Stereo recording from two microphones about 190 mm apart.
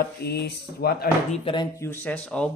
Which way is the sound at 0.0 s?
55° left (ahead or behind).